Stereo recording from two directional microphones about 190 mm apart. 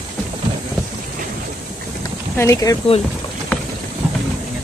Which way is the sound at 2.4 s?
15° left (ahead or behind).